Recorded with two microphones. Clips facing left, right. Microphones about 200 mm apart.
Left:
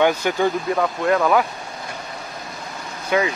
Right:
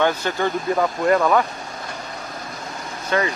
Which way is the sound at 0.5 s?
Centre (ahead or behind).